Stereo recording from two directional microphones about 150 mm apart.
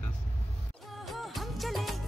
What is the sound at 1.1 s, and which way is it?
Music, centre (ahead or behind).